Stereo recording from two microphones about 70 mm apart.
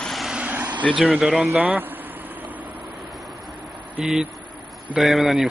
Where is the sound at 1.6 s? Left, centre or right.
Right.